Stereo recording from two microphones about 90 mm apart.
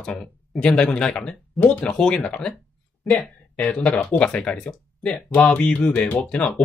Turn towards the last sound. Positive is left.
turn(degrees=10)  # may be behind; listen again after turning